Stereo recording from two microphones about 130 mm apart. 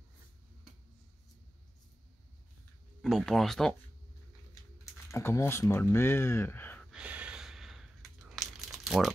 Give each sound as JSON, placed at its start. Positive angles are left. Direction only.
{"t": 3.0, "sound": "speech", "side_deg": 5}
{"t": 5.1, "sound": "speech", "side_deg": 20}
{"t": 6.9, "sound": "a sound", "side_deg": -10}